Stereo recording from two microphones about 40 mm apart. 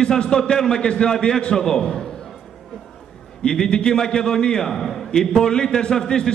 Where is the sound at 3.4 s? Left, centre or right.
Centre.